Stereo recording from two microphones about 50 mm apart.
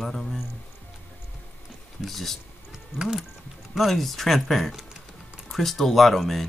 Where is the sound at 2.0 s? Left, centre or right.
Centre.